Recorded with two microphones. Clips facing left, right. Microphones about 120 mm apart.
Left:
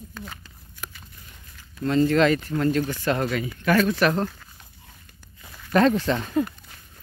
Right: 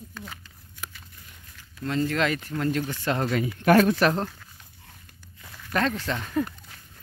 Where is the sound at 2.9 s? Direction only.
25° right (ahead or behind).